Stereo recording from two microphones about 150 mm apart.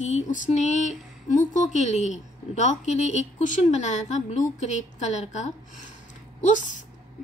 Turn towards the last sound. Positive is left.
turn(degrees=55)  # may be behind; listen again after turning